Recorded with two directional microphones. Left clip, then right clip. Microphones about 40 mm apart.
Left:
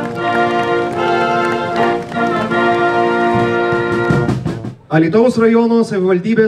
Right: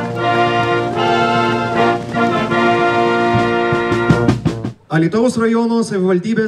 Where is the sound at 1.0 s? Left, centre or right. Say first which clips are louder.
Right 1 dB; right.